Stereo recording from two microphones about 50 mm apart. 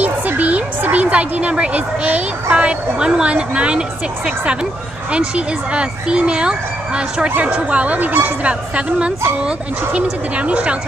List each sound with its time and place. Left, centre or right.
0.0 s a sound: right
2.5 s speech: right
5.1 s speech: right